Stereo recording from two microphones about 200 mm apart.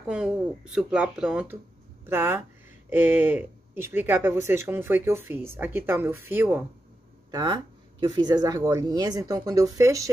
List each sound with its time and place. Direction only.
0.0 s speech: 5° right (ahead or behind)
7.2 s speech: 20° right (ahead or behind)